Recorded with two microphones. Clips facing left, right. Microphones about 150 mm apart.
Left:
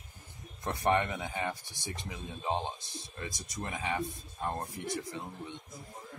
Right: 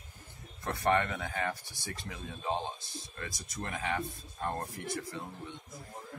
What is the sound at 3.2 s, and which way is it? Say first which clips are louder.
Speech: left 1 dB; 15° left (ahead or behind).